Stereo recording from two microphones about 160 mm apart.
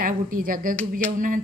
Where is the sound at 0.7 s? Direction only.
10° left (ahead or behind).